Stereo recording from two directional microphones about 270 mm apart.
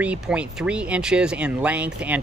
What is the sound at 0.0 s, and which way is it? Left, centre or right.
Speech, centre.